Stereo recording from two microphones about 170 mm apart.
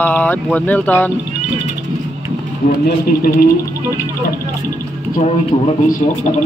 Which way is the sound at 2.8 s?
60° left (ahead or behind).